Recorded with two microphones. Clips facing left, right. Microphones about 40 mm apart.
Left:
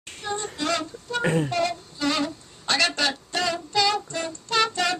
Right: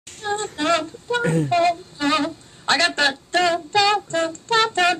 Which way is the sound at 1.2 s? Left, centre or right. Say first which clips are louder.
Right 1 dB; left.